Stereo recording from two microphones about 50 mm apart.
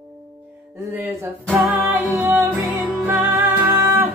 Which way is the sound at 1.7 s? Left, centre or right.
Right.